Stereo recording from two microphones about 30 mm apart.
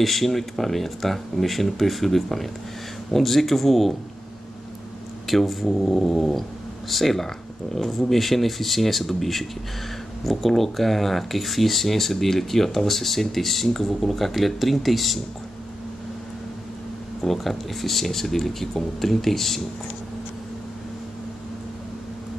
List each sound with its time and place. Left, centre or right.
0.0 s speech: centre
5.2 s speech: centre
5.7 s speech: centre
5.9 s speech: centre
17.2 s speech: centre